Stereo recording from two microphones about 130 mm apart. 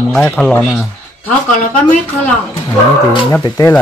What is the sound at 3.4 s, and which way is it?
Speech, 25° left (ahead or behind).